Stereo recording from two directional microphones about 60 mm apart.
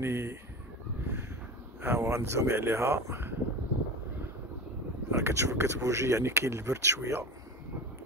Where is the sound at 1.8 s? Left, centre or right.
Right.